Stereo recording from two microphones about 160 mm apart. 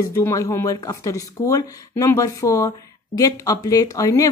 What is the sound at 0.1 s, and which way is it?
A woman's voice, 20° left (ahead or behind).